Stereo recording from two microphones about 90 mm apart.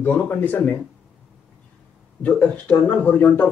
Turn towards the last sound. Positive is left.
turn(degrees=20)  # may be behind; listen again after turning